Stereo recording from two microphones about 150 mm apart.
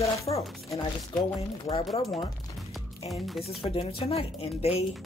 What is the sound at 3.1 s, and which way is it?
Speech, centre (ahead or behind).